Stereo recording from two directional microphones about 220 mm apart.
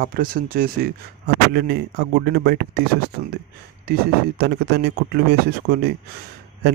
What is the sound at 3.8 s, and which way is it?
A man's voice, 45° right (ahead or behind).